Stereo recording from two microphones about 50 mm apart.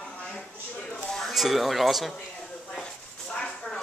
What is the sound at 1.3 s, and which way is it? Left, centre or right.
Speech, centre.